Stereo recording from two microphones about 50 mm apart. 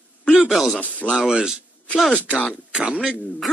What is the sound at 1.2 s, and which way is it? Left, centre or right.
Speech, centre.